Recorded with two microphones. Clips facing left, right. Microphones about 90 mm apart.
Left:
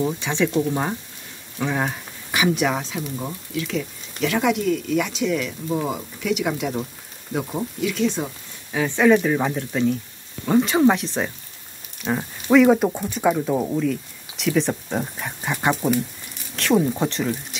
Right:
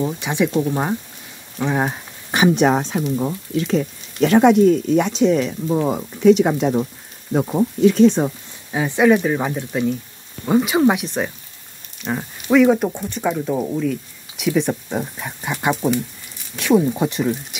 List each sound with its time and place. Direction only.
0.2 s speech: 15° right (ahead or behind)
2.3 s speech: 35° right (ahead or behind)
7.8 s speech: 40° right (ahead or behind)
8.7 s speech: 15° right (ahead or behind)